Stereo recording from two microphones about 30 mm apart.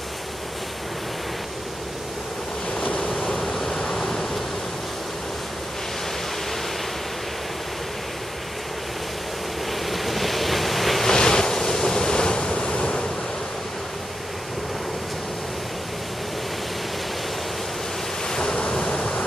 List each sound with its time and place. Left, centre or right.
3.1 s a sound: centre
9.7 s waves: centre
11.1 s waves: left
18.3 s ocean: left
18.8 s waves: left